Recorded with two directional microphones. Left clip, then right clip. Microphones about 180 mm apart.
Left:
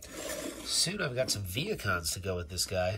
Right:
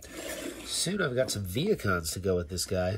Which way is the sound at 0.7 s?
20° right (ahead or behind).